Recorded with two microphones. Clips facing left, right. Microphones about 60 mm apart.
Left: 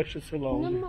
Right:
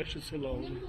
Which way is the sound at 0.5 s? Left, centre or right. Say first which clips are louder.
Left 11 dB; left.